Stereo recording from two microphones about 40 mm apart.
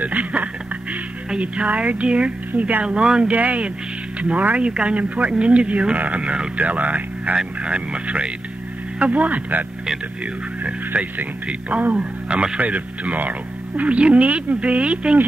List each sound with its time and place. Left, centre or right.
0.0 s a sound: right
1.4 s speech: right
3.3 s speech: right
7.3 s speech: right
9.0 s speech: right
11.9 s speech: right